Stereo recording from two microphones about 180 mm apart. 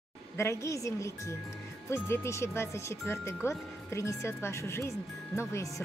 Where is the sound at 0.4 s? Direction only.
15° left (ahead or behind).